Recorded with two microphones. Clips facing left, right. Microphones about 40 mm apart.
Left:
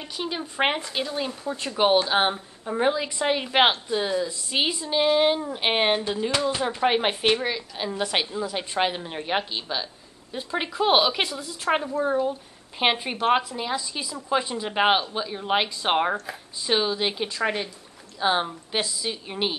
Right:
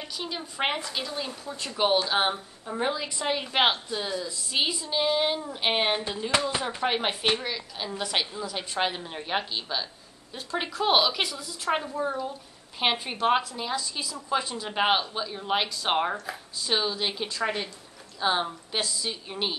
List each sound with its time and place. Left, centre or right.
0.0 s a woman's voice: centre
5.9 s speech: centre
6.8 s a woman's voice: centre